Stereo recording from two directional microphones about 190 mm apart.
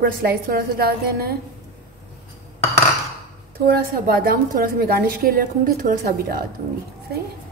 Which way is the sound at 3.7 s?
50° right (ahead or behind).